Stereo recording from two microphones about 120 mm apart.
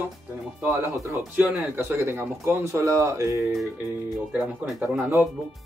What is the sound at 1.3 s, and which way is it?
Speech, 10° right (ahead or behind).